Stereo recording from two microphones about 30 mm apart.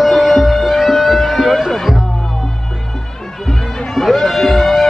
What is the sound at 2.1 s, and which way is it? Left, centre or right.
Music, centre.